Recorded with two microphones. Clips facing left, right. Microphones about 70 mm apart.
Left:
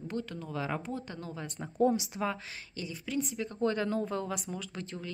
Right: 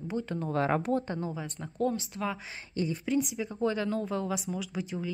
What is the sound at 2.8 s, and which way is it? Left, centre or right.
Speech, right.